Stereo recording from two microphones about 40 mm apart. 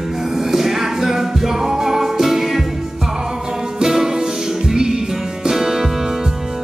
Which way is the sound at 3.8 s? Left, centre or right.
Centre.